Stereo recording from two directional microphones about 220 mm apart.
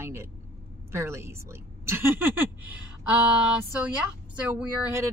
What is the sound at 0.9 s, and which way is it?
Speech, 10° right (ahead or behind).